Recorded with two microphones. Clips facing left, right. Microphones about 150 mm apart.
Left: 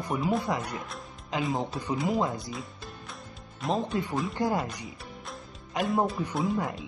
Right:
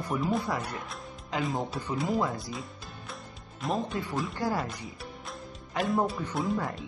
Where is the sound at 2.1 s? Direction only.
20° left (ahead or behind).